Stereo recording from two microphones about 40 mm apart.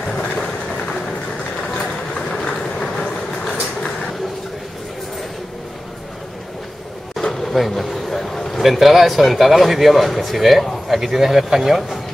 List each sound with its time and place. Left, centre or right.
0.1 s vehicle: left
2.1 s train: centre
7.3 s a sound: centre
8.6 s speech: centre